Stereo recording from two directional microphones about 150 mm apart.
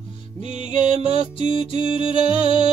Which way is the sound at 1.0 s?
35° left (ahead or behind).